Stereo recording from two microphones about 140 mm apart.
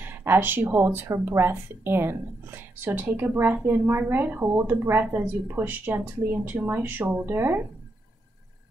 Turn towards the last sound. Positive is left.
turn(degrees=-15)  # may be behind; listen again after turning